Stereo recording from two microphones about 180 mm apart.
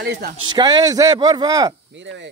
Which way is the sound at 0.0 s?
70° right (ahead or behind).